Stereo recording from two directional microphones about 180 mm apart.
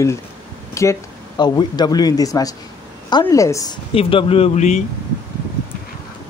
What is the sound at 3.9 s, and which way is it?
Speech, 30° left (ahead or behind).